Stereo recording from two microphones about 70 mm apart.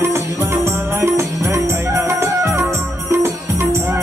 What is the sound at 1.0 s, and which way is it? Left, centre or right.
Music, right.